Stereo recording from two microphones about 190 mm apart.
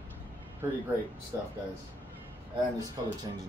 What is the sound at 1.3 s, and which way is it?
Speech, 15° right (ahead or behind).